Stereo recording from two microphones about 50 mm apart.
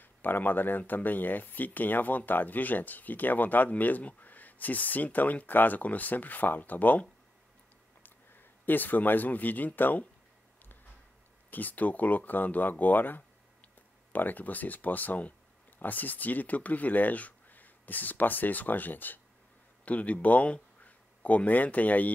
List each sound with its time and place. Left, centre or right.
0.0 s speech: left
11.5 s speech: left